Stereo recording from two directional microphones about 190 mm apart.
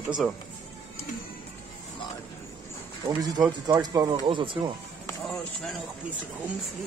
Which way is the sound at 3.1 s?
20° right (ahead or behind).